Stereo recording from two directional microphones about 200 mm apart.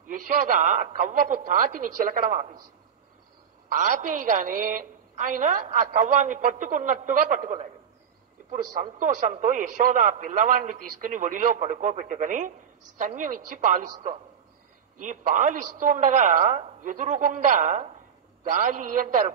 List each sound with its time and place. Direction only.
0.1 s a man's voice: 40° right (ahead or behind)
3.6 s a man's voice: 40° right (ahead or behind)
9.0 s a man's voice: 40° right (ahead or behind)
15.0 s a man's voice: 40° right (ahead or behind)